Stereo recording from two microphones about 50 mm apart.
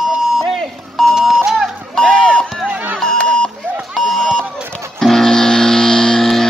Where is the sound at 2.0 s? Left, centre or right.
Centre.